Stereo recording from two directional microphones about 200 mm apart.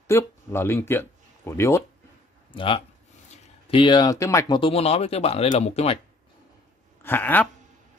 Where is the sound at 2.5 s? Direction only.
25° left (ahead or behind).